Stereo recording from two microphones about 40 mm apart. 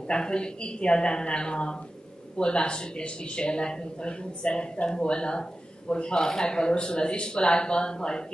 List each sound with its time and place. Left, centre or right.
0.1 s speech: left